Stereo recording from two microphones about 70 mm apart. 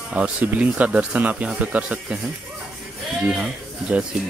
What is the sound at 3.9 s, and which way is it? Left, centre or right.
Speech, centre.